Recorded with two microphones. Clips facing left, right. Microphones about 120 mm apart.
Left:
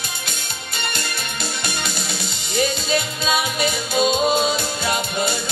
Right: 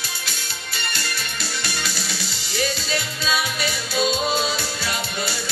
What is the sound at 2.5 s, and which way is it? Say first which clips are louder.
Music: left 4 dB; 20° left (ahead or behind).